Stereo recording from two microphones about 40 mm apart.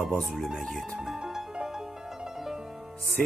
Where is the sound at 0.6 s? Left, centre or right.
Centre.